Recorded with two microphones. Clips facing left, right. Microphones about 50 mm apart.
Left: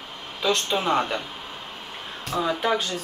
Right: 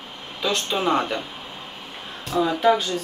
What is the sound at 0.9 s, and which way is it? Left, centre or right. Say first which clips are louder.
Speech: right 2 dB; centre.